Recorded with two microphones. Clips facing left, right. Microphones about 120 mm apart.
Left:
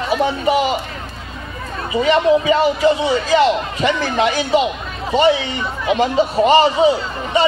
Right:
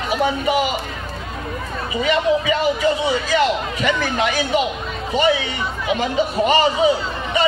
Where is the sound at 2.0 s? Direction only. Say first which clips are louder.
Left 4 dB; 35° left (ahead or behind).